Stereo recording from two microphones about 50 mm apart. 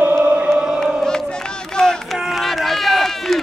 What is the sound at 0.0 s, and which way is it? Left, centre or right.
Music, right.